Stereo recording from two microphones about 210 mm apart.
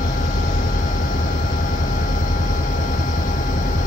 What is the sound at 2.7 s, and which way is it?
Vehicle, 40° left (ahead or behind).